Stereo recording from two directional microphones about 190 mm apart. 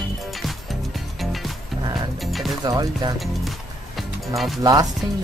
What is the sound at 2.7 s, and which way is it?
Speech, 20° right (ahead or behind).